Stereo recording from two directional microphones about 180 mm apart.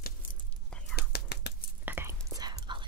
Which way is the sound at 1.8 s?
10° right (ahead or behind).